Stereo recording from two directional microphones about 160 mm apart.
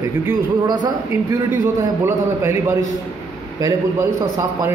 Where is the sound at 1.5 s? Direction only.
15° right (ahead or behind).